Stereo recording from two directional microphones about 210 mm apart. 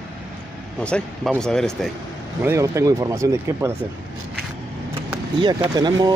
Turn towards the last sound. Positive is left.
turn(degrees=-20)  # may be behind; listen again after turning